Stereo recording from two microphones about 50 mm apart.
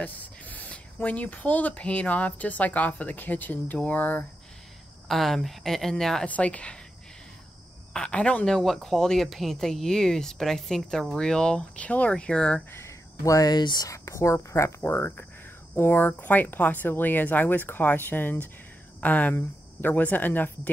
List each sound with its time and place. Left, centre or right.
0.0 s speech: left
5.0 s speech: centre
6.2 s speech: left
7.9 s speech: centre
8.5 s speech: centre
12.7 s a sound: left
13.8 s speech: left
14.8 s speech: left
18.9 s speech: left